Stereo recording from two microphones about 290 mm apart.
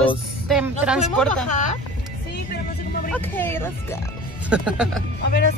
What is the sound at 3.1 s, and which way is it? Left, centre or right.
A woman's voice, centre.